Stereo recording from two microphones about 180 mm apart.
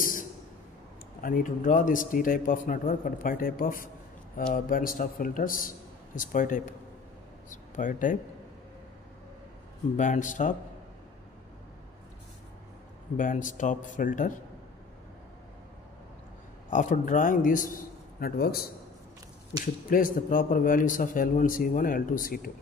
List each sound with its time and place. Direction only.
1.2 s speech: 50° left (ahead or behind)
7.7 s speech: 45° left (ahead or behind)
9.9 s speech: 45° left (ahead or behind)
13.2 s speech: 45° left (ahead or behind)
16.7 s speech: 45° left (ahead or behind)
18.2 s a man's voice: 60° left (ahead or behind)